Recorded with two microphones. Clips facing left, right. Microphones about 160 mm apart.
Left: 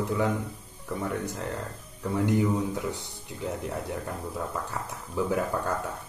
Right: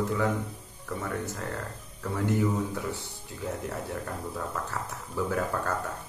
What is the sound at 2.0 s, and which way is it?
A man's voice, 15° left (ahead or behind).